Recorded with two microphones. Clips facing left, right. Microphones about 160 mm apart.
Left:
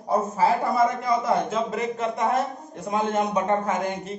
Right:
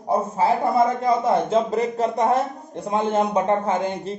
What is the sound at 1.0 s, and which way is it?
A man's voice, 30° right (ahead or behind).